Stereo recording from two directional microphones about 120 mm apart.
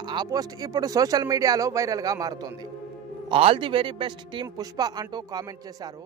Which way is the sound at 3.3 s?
50° right (ahead or behind).